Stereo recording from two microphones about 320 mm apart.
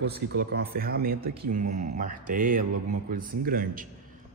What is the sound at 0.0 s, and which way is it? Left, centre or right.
Speech, right.